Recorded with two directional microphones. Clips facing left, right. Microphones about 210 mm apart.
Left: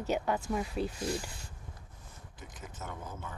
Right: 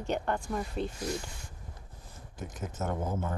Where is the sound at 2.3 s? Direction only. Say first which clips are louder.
Right 9 dB; 45° right (ahead or behind).